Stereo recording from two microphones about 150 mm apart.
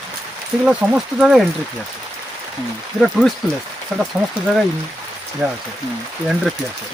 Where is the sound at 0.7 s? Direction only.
5° right (ahead or behind).